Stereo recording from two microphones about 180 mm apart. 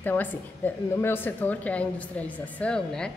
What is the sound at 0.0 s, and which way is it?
A woman's voice, 10° left (ahead or behind).